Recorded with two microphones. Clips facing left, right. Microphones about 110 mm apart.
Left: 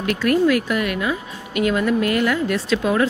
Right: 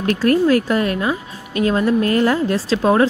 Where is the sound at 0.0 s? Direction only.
35° right (ahead or behind).